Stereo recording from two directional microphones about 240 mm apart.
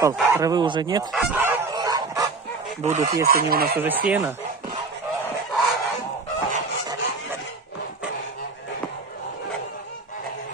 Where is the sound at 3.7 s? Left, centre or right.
Centre.